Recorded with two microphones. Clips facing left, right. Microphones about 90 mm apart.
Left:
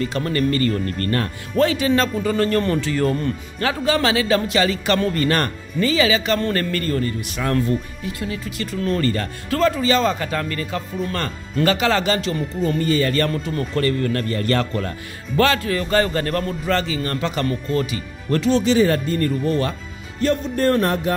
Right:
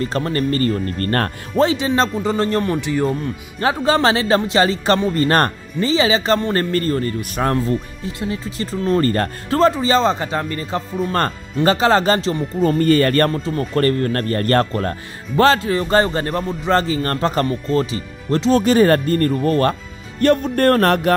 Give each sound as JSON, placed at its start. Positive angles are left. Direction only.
{"t": 0.0, "sound": "a man's voice", "side_deg": -35}
{"t": 1.6, "sound": "speech", "side_deg": -25}
{"t": 3.5, "sound": "a man's voice", "side_deg": -30}
{"t": 7.5, "sound": "a man's voice", "side_deg": -25}
{"t": 12.5, "sound": "speech", "side_deg": -45}
{"t": 13.3, "sound": "speech", "side_deg": -30}
{"t": 13.7, "sound": "a man's voice", "side_deg": -45}
{"t": 16.7, "sound": "a man's voice", "side_deg": -40}
{"t": 18.5, "sound": "speech", "side_deg": -50}
{"t": 20.2, "sound": "music", "side_deg": -60}